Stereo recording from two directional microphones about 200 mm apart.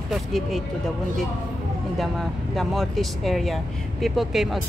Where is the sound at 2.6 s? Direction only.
Centre (ahead or behind).